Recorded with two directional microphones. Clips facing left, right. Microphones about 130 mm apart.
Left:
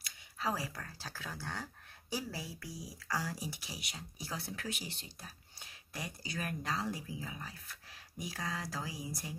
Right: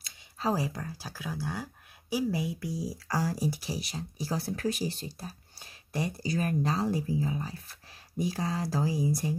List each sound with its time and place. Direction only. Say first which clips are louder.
0.0 s speech: right 6 dB; 25° right (ahead or behind)
3.1 s speech: right 8 dB; 40° right (ahead or behind)